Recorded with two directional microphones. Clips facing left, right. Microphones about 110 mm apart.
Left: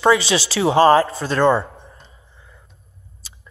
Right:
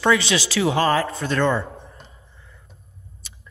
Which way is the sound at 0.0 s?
20° left (ahead or behind).